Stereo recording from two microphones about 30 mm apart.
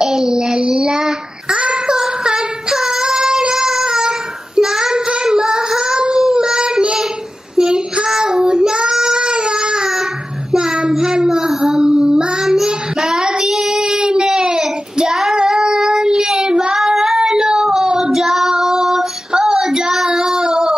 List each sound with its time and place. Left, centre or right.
0.0 s child singing: centre
9.8 s a sound: centre
10.9 s child singing: centre
17.2 s child singing: centre
17.8 s female singing: centre
18.1 s child singing: centre
20.1 s child singing: right